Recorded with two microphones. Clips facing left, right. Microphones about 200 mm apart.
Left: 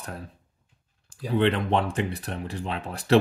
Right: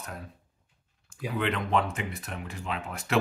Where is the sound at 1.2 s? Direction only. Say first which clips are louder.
Left 6 dB; 30° left (ahead or behind).